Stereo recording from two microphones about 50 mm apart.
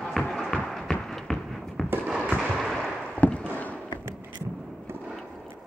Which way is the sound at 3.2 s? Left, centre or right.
Left.